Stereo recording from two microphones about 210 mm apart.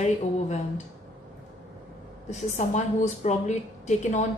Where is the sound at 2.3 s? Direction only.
30° left (ahead or behind).